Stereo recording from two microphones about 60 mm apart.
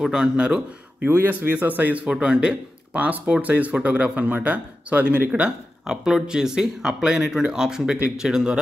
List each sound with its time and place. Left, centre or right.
0.1 s speech: centre
1.0 s a man's voice: right
5.3 s speech: centre